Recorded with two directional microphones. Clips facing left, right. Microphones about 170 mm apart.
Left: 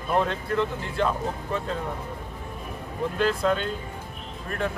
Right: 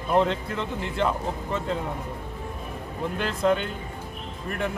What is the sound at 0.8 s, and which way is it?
Speech, 20° right (ahead or behind).